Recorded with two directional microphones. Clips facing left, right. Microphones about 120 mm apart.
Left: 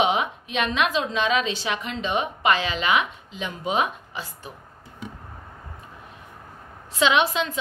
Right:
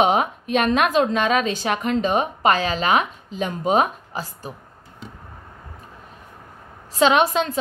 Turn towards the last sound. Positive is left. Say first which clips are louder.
# right 4 dB
turn(degrees=-45)  # may be behind; listen again after turning